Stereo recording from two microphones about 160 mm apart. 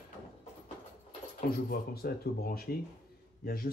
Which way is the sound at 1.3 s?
70° left (ahead or behind).